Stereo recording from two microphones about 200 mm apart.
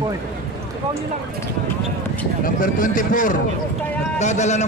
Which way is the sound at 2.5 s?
40° left (ahead or behind).